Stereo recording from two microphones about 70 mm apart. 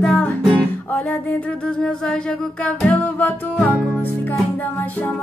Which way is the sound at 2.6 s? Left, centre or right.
Centre.